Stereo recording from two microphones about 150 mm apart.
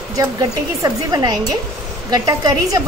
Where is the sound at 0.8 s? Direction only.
25° right (ahead or behind).